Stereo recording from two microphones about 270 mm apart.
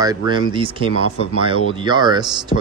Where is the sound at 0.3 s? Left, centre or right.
Centre.